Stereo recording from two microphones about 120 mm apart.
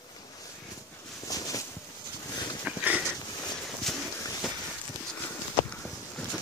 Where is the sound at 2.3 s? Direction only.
35° left (ahead or behind).